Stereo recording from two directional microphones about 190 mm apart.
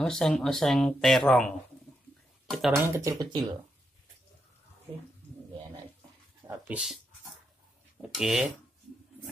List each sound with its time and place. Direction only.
0.0 s speech: 5° left (ahead or behind)
2.7 s speech: 10° right (ahead or behind)
6.4 s a sound: 5° right (ahead or behind)
8.0 s speech: centre (ahead or behind)